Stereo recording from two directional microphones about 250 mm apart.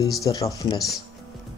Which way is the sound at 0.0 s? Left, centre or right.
Centre.